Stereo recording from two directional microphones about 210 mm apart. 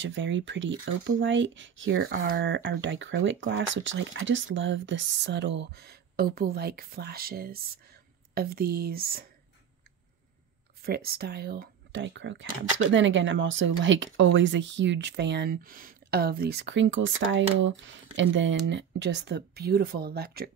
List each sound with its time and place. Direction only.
0.0 s speech: 60° right (ahead or behind); by 2.4 s 45° right (ahead or behind)
2.4 s speech: 55° right (ahead or behind)
10.8 s speech: 45° right (ahead or behind)